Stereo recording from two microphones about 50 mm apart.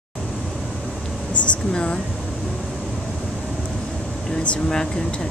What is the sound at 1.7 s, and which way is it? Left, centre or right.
Speech, centre.